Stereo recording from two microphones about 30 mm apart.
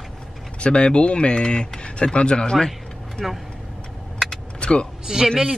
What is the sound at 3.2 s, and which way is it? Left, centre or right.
Speech, centre.